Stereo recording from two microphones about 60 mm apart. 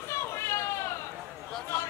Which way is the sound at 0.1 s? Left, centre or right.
Left.